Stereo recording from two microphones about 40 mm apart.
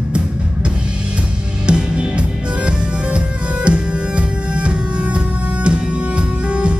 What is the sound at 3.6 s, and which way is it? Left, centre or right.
Music, right.